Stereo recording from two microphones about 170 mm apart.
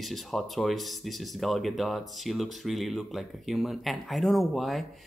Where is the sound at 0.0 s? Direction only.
Centre (ahead or behind).